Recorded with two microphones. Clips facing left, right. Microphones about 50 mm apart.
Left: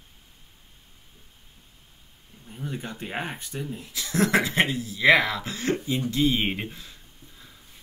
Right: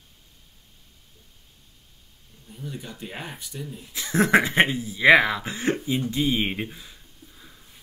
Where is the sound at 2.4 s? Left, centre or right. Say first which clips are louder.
Left 3 dB; left.